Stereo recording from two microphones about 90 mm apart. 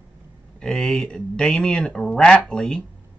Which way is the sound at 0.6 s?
5° left (ahead or behind).